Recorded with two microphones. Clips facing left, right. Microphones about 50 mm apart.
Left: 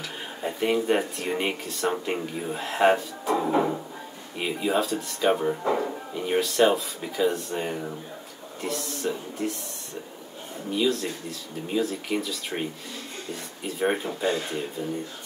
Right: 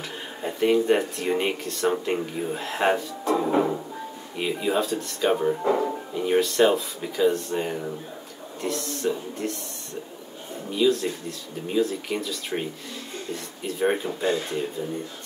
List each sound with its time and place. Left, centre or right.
0.4 s speech: centre
3.3 s music: centre
4.4 s speech: centre
10.7 s speech: centre
13.7 s speech: centre